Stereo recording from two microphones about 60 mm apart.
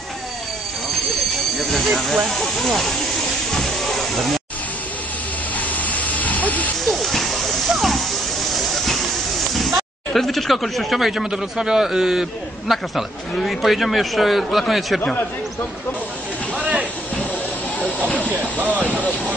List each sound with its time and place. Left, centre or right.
1.6 s speech: centre
3.5 s steam: centre
5.6 s hiss: left
6.8 s a sound: centre
8.5 s hiss: centre
9.6 s speech: centre
16.5 s a sound: centre
18.6 s speech: right